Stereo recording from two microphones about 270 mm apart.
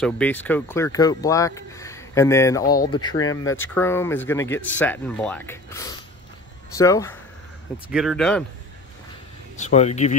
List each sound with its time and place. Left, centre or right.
0.0 s speech: centre
7.9 s speech: centre
9.6 s speech: left